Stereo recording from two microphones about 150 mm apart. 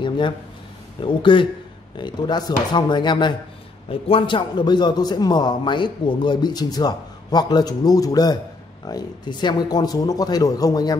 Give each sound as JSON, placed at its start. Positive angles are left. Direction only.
{"t": 1.0, "sound": "a man's voice", "side_deg": 35}